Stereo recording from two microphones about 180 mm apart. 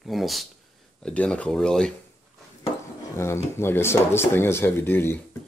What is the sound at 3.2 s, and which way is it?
Speech, 15° left (ahead or behind).